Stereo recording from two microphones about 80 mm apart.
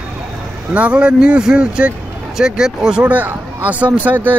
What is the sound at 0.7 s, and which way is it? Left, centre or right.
Speech, centre.